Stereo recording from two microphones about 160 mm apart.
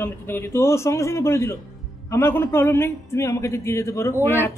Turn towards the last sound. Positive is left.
turn(degrees=15)  # may be behind; listen again after turning